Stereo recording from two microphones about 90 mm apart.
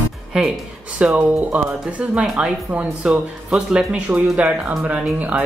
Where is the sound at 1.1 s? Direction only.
15° right (ahead or behind).